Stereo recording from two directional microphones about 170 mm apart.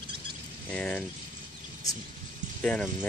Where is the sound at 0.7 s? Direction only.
5° left (ahead or behind).